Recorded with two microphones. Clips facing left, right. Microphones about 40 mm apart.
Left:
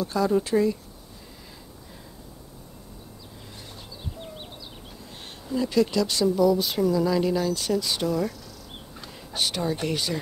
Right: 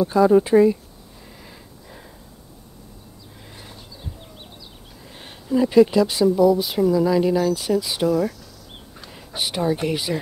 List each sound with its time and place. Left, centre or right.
0.0 s speech: right
5.5 s speech: centre